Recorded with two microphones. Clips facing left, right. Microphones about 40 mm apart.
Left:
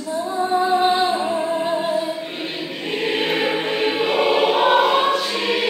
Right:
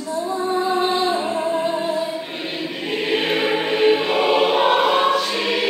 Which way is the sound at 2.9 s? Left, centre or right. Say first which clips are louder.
Even; centre.